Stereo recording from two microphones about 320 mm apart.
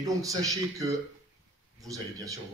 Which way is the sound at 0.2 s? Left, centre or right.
Centre.